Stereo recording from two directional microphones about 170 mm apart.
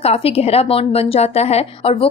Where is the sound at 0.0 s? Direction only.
35° left (ahead or behind).